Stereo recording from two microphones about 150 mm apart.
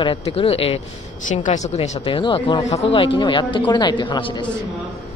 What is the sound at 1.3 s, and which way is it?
Speech, 50° left (ahead or behind).